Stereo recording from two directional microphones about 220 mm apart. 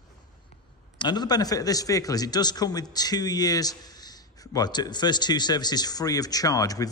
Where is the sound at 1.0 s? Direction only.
20° left (ahead or behind).